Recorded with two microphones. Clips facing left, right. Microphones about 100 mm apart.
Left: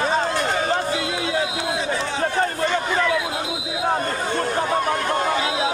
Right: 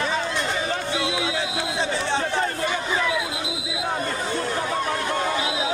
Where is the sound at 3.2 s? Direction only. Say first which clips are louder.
Left 3 dB; 45° left (ahead or behind).